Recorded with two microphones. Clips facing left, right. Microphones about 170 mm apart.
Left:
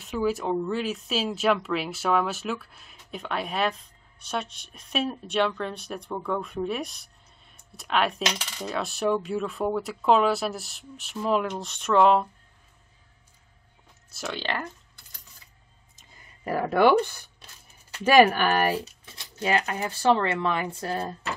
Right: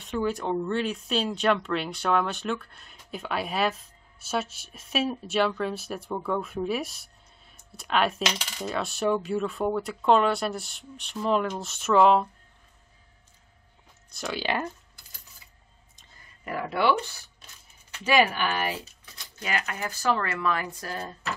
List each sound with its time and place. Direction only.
0.0 s speech: centre (ahead or behind)
14.1 s speech: centre (ahead or behind)
16.4 s speech: 40° left (ahead or behind)
19.0 s speech: 30° left (ahead or behind)